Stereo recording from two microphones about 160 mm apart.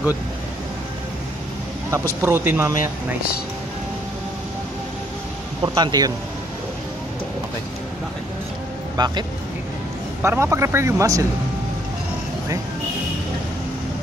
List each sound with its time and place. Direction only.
1.9 s speech: 15° right (ahead or behind)
5.6 s speech: 25° right (ahead or behind)
8.9 s speech: 25° right (ahead or behind)
10.2 s speech: 15° right (ahead or behind)